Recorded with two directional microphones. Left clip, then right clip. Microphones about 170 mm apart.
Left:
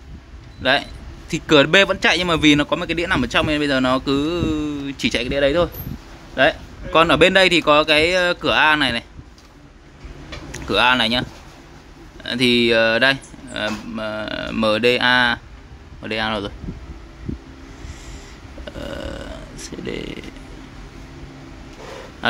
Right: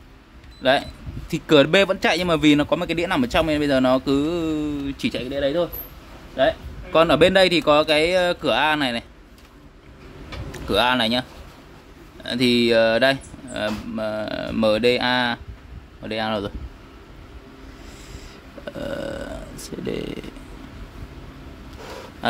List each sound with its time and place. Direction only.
0.6 s a man's voice: 10° right (ahead or behind)
5.1 s speech: 15° left (ahead or behind)
6.9 s speech: 5° right (ahead or behind)
10.5 s a man's voice: 5° right (ahead or behind)
18.7 s a sound: 15° right (ahead or behind)